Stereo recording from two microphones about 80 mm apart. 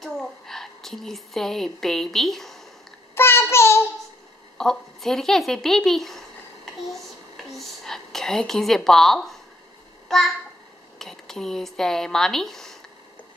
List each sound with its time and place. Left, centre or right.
0.0 s a woman's voice: centre
3.2 s child singing: left
4.6 s a woman's voice: centre
10.0 s a sound: centre
11.0 s speech: centre